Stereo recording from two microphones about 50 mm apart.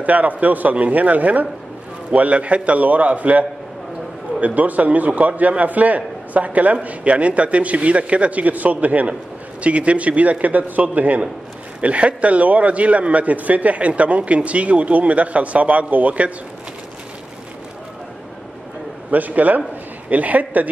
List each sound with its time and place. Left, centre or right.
0.0 s a man's voice: right
19.0 s a man's voice: right